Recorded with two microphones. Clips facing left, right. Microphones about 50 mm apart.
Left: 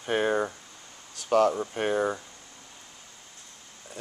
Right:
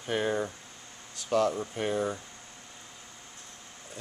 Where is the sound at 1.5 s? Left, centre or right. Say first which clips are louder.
Left 3 dB; left.